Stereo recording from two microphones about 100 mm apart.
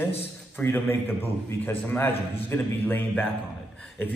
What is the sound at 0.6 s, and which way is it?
A man's voice, 20° left (ahead or behind).